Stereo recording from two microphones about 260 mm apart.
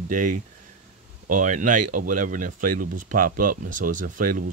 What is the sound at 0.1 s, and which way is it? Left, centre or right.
Speech, right.